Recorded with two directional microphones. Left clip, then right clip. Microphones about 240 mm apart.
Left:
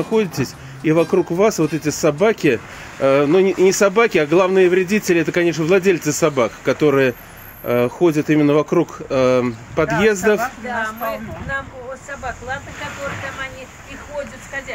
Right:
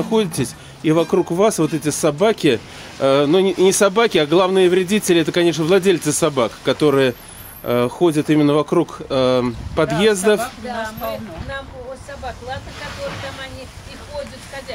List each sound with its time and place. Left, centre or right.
0.0 s speech: centre